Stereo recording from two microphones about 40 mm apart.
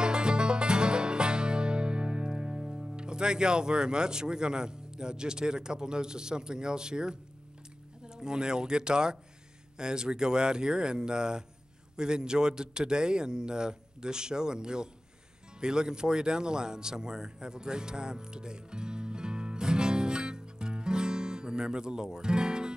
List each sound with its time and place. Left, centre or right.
0.0 s music: right
3.0 s speech: right
8.2 s speech: centre
15.6 s a sound: centre